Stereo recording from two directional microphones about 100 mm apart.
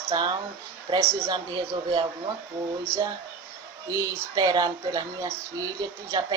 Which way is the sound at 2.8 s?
30° right (ahead or behind).